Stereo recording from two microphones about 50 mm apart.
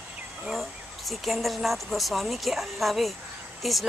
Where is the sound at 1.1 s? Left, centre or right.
Centre.